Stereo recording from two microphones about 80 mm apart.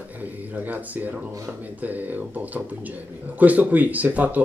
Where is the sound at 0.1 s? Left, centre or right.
Right.